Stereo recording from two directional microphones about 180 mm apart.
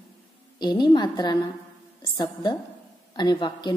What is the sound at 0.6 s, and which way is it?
A woman's voice, 25° left (ahead or behind).